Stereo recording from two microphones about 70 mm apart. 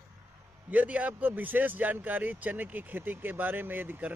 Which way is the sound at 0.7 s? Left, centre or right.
Right.